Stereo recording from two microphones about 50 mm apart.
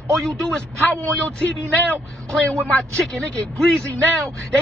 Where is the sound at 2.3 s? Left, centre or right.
Left.